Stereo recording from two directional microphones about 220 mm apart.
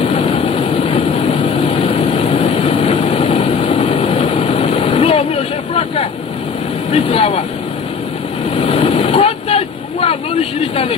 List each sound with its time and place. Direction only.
0.0 s vehicle: 30° left (ahead or behind)
8.5 s vehicle: 25° left (ahead or behind)